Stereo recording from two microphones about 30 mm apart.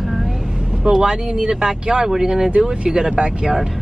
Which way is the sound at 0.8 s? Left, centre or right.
Right.